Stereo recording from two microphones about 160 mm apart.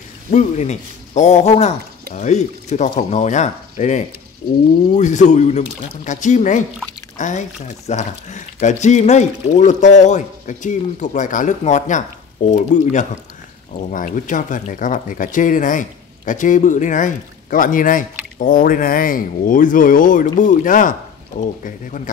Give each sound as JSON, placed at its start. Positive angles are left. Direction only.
{"t": 0.3, "sound": "speech", "side_deg": 45}